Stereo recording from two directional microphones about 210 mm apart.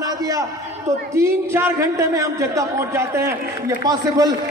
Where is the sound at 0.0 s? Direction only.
15° right (ahead or behind).